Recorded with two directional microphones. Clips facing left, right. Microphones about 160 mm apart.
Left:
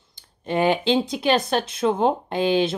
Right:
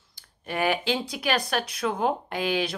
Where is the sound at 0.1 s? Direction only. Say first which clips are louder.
Left 8 dB; 25° left (ahead or behind).